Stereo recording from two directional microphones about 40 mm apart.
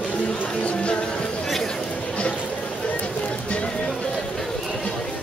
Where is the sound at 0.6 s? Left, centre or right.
Left.